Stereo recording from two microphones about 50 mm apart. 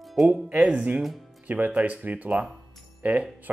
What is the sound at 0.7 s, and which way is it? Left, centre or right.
Speech, right.